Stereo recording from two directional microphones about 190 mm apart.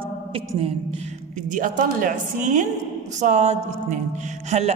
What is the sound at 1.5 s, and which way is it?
A woman's voice, 45° right (ahead or behind).